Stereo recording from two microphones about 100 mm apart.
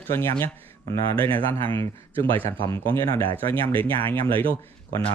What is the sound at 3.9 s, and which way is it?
Speech, 20° left (ahead or behind).